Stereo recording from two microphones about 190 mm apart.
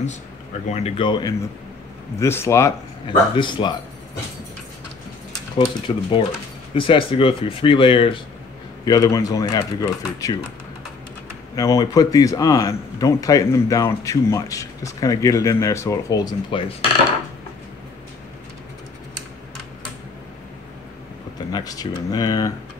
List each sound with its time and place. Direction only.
0.7 s speech: 35° left (ahead or behind)
2.1 s a man's voice: 15° left (ahead or behind)
3.1 s speech: 25° left (ahead or behind)
5.6 s speech: 25° left (ahead or behind)
11.5 s a man's voice: 20° left (ahead or behind)
21.5 s speech: 20° left (ahead or behind)